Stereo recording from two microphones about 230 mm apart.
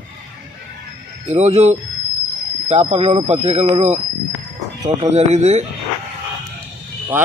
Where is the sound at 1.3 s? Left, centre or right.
Right.